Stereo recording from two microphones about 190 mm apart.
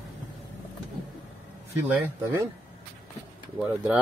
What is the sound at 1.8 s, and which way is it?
Speech, 10° right (ahead or behind).